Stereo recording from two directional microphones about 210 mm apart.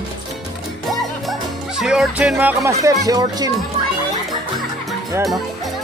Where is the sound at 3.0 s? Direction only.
20° right (ahead or behind).